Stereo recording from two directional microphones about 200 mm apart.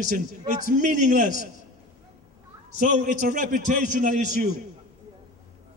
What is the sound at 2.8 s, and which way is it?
A man's voice, 40° right (ahead or behind).